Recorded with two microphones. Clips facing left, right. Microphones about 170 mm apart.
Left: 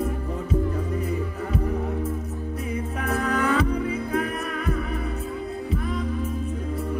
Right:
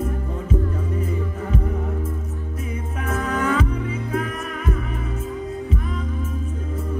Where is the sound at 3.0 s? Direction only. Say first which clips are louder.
Right 1 dB; 35° left (ahead or behind).